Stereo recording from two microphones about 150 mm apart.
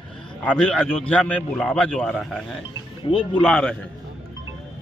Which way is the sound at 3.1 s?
35° left (ahead or behind).